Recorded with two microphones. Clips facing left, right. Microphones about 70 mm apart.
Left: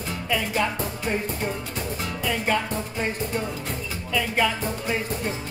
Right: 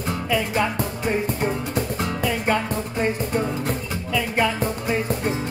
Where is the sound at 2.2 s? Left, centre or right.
Centre.